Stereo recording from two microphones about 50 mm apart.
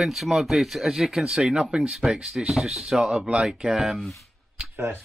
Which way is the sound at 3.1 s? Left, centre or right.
Right.